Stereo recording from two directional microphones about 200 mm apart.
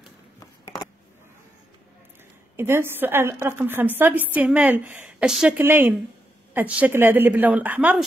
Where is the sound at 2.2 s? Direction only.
10° right (ahead or behind).